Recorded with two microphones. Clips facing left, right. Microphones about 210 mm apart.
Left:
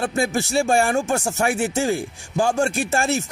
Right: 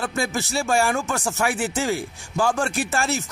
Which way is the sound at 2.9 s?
50° left (ahead or behind).